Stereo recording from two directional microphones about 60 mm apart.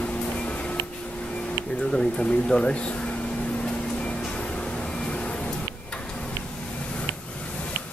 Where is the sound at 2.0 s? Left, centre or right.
Centre.